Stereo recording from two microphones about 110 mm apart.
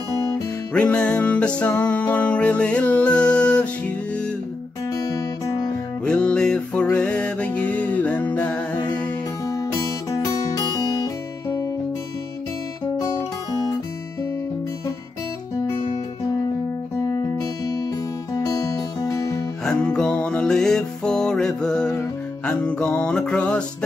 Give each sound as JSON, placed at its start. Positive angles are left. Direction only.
{"t": 0.7, "sound": "music", "side_deg": 10}
{"t": 4.9, "sound": "guitar", "side_deg": 30}
{"t": 6.0, "sound": "music", "side_deg": 10}
{"t": 8.7, "sound": "music", "side_deg": 40}
{"t": 10.1, "sound": "music", "side_deg": 30}
{"t": 18.3, "sound": "music", "side_deg": 30}
{"t": 19.6, "sound": "music", "side_deg": 10}